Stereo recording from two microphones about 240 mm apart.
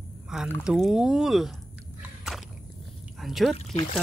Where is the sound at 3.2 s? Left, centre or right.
Centre.